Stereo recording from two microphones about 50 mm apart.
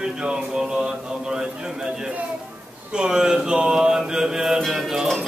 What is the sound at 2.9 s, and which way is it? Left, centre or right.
Mantra, centre.